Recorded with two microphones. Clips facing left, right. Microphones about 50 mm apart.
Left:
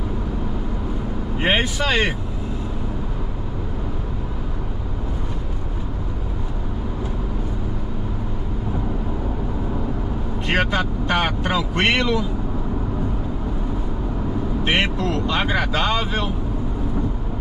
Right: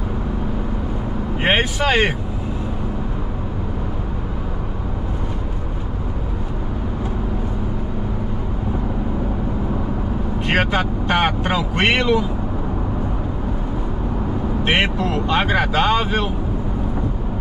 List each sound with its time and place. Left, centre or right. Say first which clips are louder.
1.4 s speech: right 2 dB; right
10.4 s vehicle: right 2 dB; centre
14.6 s speech: right 2 dB; centre